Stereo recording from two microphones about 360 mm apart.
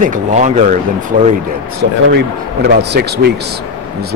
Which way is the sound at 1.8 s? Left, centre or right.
Right.